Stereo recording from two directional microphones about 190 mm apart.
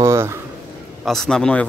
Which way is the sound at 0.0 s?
15° right (ahead or behind).